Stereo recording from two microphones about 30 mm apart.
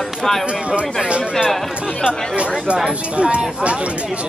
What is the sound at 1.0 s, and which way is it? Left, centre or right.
Speech, right.